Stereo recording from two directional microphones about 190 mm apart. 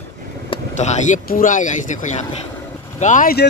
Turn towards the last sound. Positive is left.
turn(degrees=50)  # may be behind; listen again after turning